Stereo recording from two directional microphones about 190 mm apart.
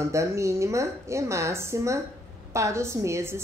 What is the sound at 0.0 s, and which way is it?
Speech, 15° right (ahead or behind).